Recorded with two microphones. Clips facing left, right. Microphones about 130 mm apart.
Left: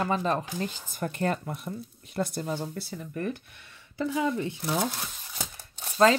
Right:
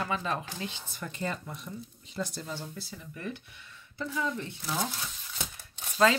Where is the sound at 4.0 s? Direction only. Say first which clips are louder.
Left 6 dB; 75° left (ahead or behind).